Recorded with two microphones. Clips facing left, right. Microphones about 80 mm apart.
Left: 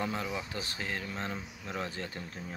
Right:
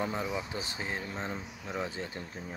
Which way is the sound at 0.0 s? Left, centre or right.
Centre.